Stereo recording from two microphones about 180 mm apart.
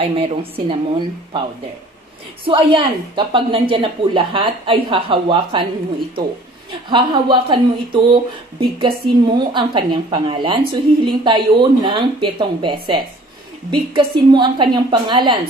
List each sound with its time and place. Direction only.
0.0 s a woman's voice: 30° right (ahead or behind)
2.4 s a woman's voice: 30° right (ahead or behind)
6.9 s a woman's voice: 25° right (ahead or behind)